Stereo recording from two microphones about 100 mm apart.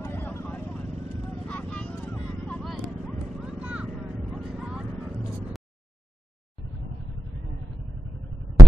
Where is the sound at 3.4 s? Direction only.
10° right (ahead or behind).